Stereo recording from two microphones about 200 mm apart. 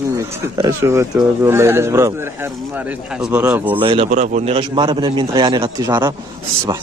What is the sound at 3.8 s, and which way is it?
A man's voice, 30° right (ahead or behind).